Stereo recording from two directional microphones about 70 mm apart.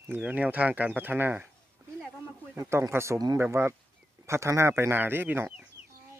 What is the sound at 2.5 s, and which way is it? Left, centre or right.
Speech, right.